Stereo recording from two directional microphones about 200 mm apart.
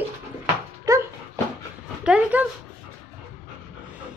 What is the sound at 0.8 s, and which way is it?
Dog, 15° right (ahead or behind).